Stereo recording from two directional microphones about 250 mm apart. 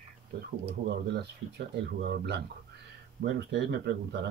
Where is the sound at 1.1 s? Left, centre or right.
Right.